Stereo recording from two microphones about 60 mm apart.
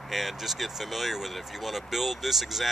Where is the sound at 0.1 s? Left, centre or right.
Centre.